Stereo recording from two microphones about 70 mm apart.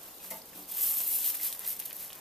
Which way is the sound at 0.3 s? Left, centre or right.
Centre.